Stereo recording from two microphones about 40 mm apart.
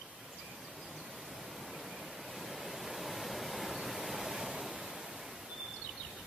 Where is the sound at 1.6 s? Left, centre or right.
Centre.